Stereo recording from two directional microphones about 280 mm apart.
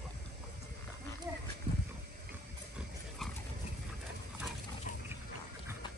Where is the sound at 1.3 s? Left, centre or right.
Centre.